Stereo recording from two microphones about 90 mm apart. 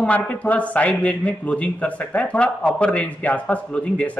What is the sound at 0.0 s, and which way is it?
A man's voice, 15° left (ahead or behind).